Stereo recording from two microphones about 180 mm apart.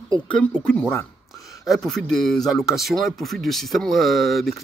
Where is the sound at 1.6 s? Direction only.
Centre (ahead or behind).